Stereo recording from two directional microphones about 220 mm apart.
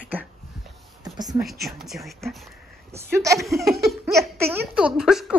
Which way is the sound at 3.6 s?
Centre (ahead or behind).